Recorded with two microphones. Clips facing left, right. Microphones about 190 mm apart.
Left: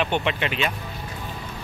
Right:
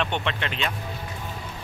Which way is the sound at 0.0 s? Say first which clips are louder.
Left 4 dB; 5° left (ahead or behind).